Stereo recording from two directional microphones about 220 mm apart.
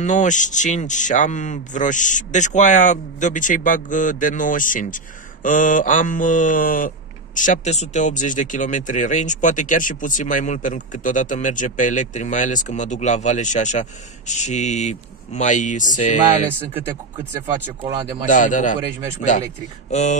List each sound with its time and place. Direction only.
0.0 s speech: 35° left (ahead or behind)
18.2 s speech: 35° left (ahead or behind)
19.9 s speech: 30° left (ahead or behind)